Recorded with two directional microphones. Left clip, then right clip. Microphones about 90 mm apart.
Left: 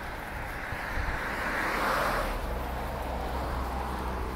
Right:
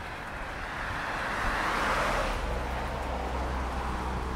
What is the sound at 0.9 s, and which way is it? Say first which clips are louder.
Vehicle: right 2 dB; 55° right (ahead or behind).